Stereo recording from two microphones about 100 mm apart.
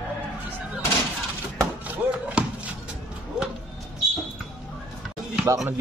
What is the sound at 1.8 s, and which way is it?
Basketball bounce, 15° right (ahead or behind).